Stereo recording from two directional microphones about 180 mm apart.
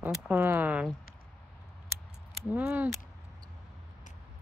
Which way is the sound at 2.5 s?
5° right (ahead or behind).